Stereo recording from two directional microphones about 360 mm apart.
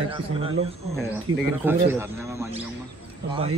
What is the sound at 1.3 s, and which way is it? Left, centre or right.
Speech, right.